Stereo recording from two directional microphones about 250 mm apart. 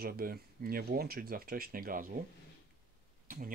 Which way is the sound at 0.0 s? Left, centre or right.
Right.